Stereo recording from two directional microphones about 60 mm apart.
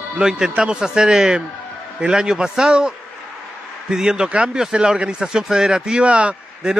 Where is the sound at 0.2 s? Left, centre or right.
Centre.